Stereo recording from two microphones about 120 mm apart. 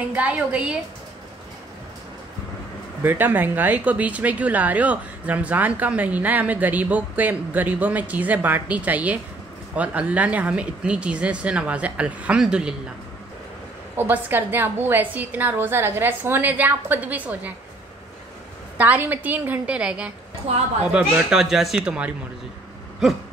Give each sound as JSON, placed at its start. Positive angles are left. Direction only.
{"t": 0.0, "sound": "speech", "side_deg": -10}
{"t": 3.0, "sound": "speech", "side_deg": -15}
{"t": 13.9, "sound": "speech", "side_deg": -15}
{"t": 18.8, "sound": "speech", "side_deg": -15}